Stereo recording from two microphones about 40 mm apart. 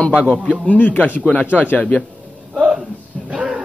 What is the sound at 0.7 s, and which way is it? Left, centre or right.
Speech, left.